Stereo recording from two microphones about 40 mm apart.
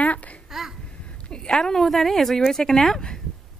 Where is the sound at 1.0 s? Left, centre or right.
Left.